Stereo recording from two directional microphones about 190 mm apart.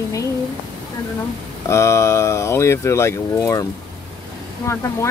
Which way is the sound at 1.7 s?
15° left (ahead or behind).